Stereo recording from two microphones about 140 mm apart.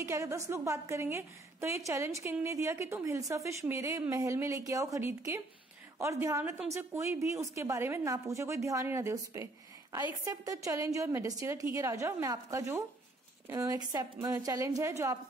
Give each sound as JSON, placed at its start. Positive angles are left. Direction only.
{"t": 0.0, "sound": "a woman's voice", "side_deg": -20}